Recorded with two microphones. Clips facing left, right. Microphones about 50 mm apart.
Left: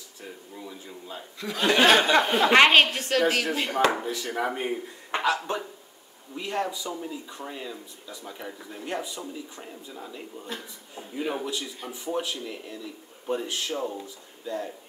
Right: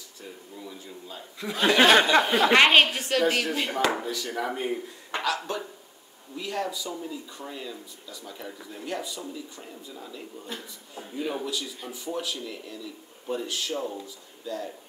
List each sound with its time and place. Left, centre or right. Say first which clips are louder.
1.4 s speech: right 1 dB; centre
1.7 s a woman's voice: right 1 dB; centre
3.7 s speech: left 5 dB; left
10.4 s speech: left 1 dB; centre
11.1 s speech: left 1 dB; centre